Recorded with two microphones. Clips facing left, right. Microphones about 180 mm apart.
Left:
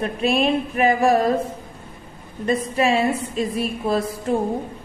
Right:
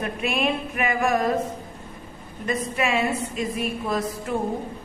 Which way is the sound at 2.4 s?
30° left (ahead or behind).